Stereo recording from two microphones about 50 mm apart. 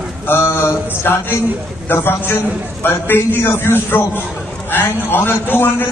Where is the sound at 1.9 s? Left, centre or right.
Left.